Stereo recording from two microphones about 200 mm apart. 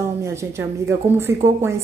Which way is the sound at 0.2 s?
15° right (ahead or behind).